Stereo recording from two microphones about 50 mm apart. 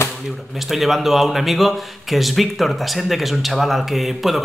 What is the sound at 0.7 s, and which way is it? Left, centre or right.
Speech, centre.